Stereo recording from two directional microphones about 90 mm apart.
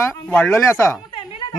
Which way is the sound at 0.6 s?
30° left (ahead or behind).